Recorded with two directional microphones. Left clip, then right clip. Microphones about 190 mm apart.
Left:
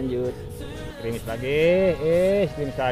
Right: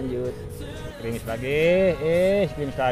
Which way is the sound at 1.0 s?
15° left (ahead or behind).